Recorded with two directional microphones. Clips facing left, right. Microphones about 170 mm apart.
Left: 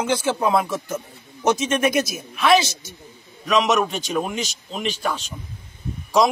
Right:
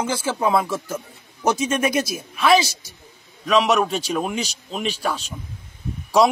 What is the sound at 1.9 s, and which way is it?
Speech, 30° right (ahead or behind).